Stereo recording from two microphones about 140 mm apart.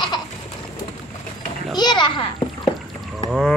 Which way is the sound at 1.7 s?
30° left (ahead or behind).